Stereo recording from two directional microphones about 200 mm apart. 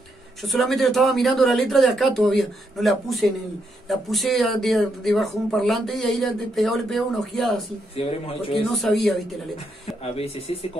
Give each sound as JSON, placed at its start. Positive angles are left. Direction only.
{"t": 0.4, "sound": "speech", "side_deg": 0}
{"t": 7.9, "sound": "speech", "side_deg": 30}
{"t": 8.7, "sound": "speech", "side_deg": 0}
{"t": 10.1, "sound": "speech", "side_deg": 30}